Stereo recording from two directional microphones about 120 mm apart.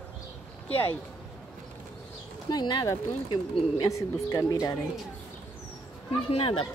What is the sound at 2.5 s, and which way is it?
Speech, 35° left (ahead or behind).